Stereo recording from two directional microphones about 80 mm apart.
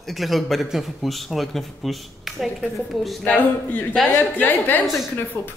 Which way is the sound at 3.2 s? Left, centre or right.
Centre.